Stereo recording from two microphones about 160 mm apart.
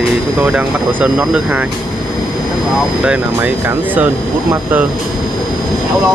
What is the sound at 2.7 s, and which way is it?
Speech, 5° right (ahead or behind).